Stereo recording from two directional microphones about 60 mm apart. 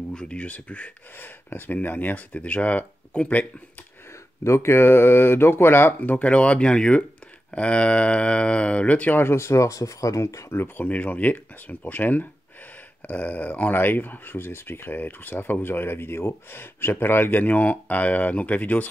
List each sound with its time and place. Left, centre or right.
0.1 s speech: centre
1.1 s speech: left
4.1 s speech: left
9.2 s speech: left
10.5 s speech: left
10.9 s speech: left